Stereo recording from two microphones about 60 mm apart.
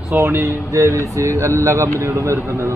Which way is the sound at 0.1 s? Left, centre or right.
Right.